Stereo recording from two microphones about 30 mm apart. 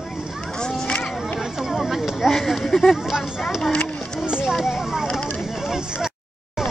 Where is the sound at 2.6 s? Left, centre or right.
Centre.